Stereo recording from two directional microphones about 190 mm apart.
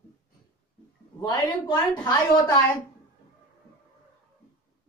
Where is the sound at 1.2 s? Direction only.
25° left (ahead or behind).